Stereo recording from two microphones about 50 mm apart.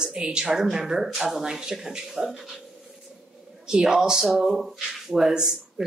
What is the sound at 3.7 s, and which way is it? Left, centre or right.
Speech, centre.